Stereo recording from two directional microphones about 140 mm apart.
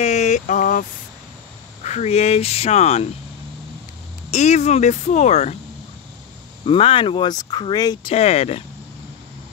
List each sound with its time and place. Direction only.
0.0 s a sound: 55° left (ahead or behind)
1.8 s speech: 55° left (ahead or behind)
4.3 s speech: 55° left (ahead or behind)
6.6 s speech: 40° left (ahead or behind)
8.1 s speech: 45° left (ahead or behind)